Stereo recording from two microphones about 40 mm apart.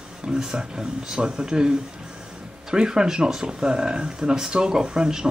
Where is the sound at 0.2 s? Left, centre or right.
Centre.